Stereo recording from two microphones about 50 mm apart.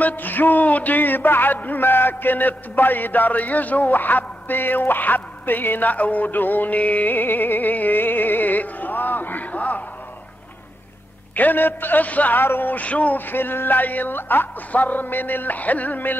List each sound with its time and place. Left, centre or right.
0.0 s a man's voice: left
11.3 s speech: left
12.4 s speech: left
13.3 s speech: left